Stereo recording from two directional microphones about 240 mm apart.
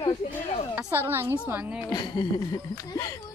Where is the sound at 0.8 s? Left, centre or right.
Centre.